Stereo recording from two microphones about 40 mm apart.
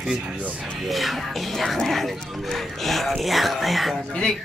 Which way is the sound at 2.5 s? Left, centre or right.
Centre.